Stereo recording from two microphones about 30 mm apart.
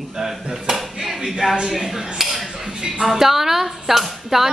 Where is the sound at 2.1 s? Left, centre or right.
Centre.